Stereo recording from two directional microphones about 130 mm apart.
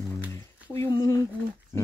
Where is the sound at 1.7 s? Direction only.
30° left (ahead or behind).